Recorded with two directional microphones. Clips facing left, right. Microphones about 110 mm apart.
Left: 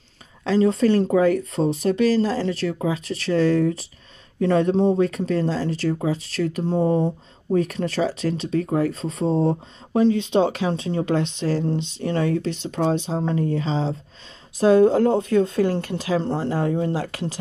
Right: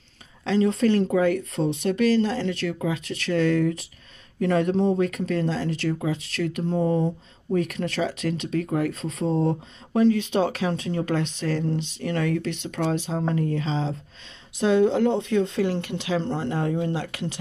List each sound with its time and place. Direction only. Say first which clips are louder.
0.4 s speech: left 3 dB; 35° left (ahead or behind)